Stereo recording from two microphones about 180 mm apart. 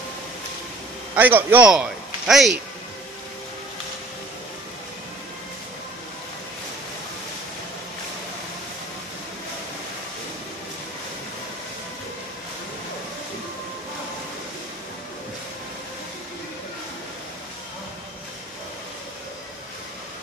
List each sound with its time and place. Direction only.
1.1 s a man's voice: 10° right (ahead or behind)